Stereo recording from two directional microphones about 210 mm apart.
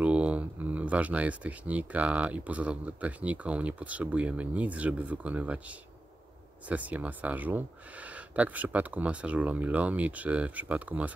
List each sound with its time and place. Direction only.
0.0 s speech: 5° right (ahead or behind)
6.7 s speech: 5° right (ahead or behind)